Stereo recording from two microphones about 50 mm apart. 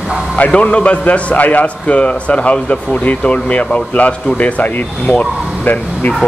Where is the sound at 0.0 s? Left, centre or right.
Centre.